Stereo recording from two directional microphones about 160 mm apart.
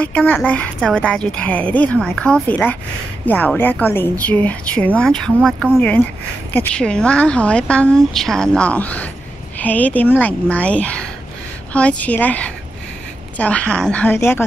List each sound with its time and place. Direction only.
0.0 s a woman's voice: 10° left (ahead or behind)